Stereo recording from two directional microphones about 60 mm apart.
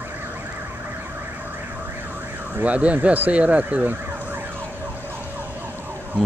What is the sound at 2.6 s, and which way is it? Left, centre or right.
Speech, right.